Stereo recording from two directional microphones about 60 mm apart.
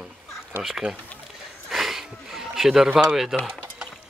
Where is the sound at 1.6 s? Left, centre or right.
Centre.